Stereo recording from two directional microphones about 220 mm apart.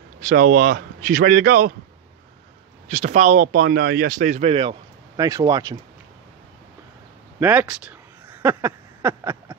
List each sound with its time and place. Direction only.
0.2 s speech: 35° right (ahead or behind)
2.9 s speech: 30° right (ahead or behind)
7.3 s a sound: 10° right (ahead or behind)